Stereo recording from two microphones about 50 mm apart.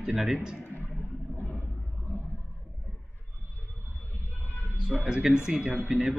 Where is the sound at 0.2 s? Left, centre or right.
Centre.